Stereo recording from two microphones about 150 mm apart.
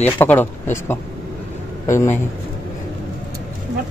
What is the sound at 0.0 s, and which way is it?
Speech, 10° left (ahead or behind).